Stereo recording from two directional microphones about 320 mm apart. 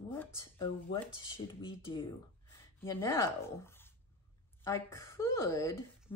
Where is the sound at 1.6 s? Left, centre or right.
Centre.